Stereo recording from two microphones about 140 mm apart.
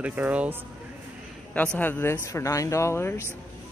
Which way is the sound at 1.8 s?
15° left (ahead or behind).